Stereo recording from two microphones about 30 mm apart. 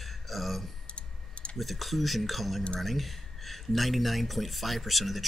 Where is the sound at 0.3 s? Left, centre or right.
Centre.